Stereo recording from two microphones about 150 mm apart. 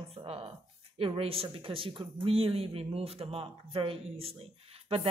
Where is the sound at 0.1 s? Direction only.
40° right (ahead or behind).